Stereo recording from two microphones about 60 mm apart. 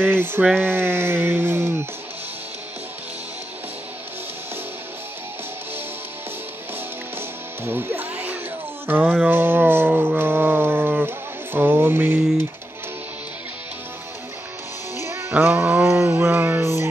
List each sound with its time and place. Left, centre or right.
0.0 s speech: right
7.2 s music: right
15.0 s music: right
15.4 s a sound: right